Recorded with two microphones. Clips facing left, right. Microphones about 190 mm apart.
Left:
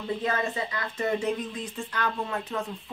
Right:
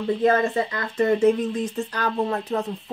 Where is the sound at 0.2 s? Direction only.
50° right (ahead or behind).